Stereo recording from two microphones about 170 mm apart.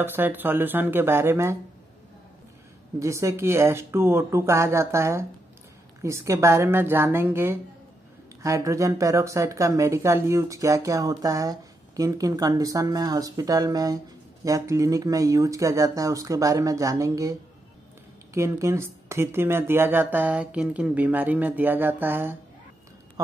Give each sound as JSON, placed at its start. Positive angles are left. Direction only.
{"t": 0.0, "sound": "speech", "side_deg": -10}
{"t": 3.0, "sound": "speech", "side_deg": -15}